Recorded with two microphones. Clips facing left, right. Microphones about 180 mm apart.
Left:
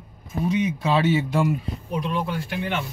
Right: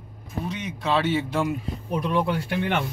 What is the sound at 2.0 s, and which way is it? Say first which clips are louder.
Speech: right 3 dB; 60° right (ahead or behind).